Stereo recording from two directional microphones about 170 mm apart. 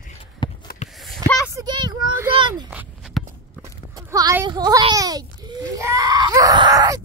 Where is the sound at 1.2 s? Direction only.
20° right (ahead or behind).